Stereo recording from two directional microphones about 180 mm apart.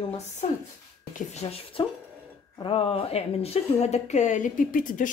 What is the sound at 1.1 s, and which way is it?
A woman's voice, 35° left (ahead or behind).